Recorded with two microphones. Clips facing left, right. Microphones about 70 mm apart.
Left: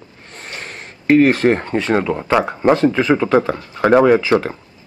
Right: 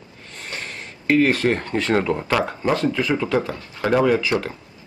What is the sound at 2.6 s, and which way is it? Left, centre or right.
Speech, left.